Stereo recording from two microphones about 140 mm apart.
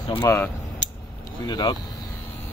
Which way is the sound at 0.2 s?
20° left (ahead or behind).